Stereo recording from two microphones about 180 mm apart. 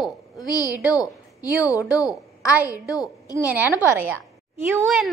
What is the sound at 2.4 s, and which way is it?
Speech, 10° right (ahead or behind).